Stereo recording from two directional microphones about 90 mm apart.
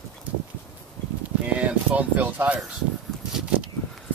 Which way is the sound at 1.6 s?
15° right (ahead or behind).